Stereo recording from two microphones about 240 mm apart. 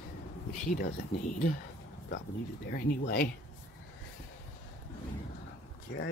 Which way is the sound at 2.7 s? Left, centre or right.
Left.